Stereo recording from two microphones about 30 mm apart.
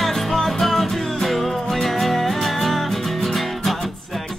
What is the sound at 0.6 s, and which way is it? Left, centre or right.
Music, centre.